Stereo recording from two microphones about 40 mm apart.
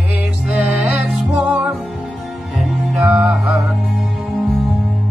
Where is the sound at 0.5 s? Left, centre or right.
Right.